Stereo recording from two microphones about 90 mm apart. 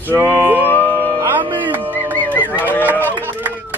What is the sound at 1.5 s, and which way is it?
Music, 20° right (ahead or behind).